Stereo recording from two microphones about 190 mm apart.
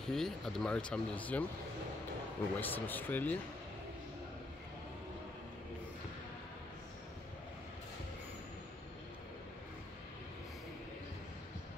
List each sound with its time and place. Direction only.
0.1 s speech: centre (ahead or behind)
2.5 s speech: 10° left (ahead or behind)